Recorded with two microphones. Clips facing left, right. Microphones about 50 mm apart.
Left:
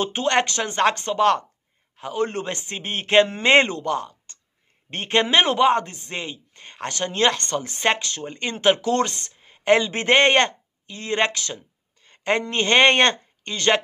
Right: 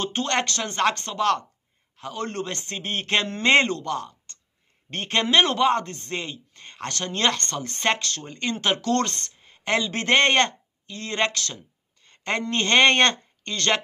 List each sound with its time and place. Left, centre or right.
0.0 s a man's voice: centre